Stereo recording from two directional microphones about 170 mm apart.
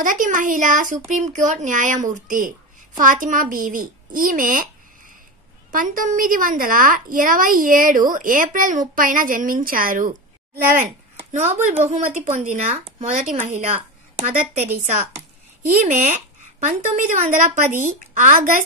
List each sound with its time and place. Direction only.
0.0 s a child's voice: 50° right (ahead or behind)
5.7 s speech: 55° right (ahead or behind)
10.8 s a sound: 55° right (ahead or behind)
11.4 s a woman's voice: 35° right (ahead or behind)
15.1 s a sound: 10° right (ahead or behind)
15.9 s speech: 50° right (ahead or behind)